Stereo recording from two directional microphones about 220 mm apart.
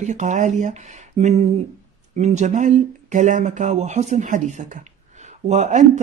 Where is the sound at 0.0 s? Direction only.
35° right (ahead or behind).